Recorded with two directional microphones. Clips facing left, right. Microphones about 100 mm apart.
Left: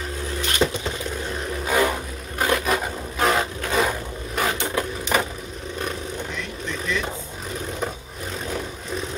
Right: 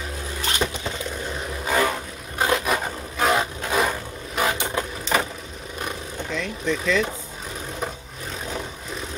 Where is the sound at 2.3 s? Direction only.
20° right (ahead or behind).